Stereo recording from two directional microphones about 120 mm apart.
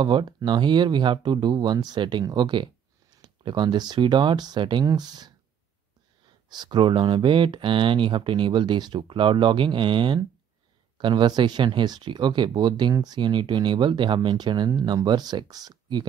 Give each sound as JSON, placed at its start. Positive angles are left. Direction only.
{"t": 0.0, "sound": "speech", "side_deg": -40}
{"t": 6.5, "sound": "speech", "side_deg": -35}